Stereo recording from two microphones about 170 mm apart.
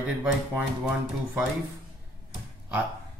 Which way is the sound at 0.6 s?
10° right (ahead or behind).